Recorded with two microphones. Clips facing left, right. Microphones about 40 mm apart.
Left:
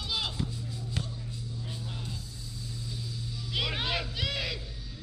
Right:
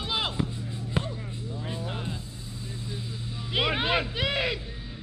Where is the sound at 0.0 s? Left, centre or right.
Right.